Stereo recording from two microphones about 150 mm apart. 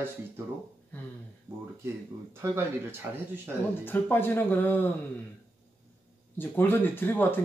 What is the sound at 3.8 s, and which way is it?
Speech, 15° left (ahead or behind).